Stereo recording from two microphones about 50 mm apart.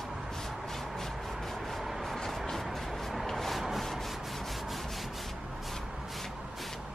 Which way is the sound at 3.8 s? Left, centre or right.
Centre.